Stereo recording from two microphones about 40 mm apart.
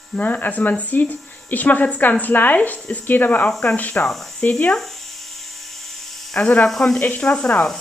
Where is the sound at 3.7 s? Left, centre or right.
Left.